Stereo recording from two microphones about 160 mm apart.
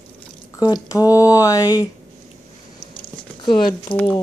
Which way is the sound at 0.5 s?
25° left (ahead or behind).